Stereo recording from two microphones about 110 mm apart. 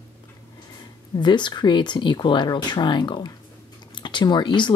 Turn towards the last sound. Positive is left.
turn(degrees=45)  # may be behind; listen again after turning